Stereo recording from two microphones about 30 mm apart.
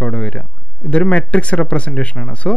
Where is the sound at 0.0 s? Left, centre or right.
Left.